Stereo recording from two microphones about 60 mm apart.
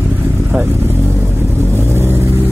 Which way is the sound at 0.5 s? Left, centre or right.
Right.